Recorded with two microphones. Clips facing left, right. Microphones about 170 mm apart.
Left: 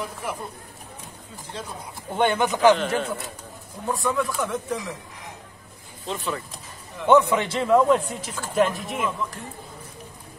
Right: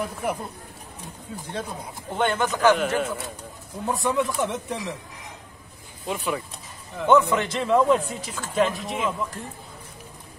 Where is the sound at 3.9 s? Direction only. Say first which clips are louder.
Right 1 dB; 25° right (ahead or behind).